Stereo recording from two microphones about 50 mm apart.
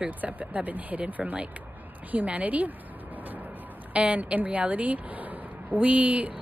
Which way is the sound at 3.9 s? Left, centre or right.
Right.